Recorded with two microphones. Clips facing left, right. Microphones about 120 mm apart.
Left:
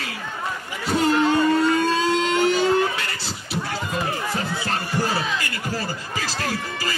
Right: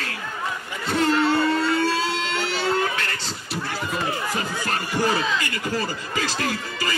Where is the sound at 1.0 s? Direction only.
15° left (ahead or behind).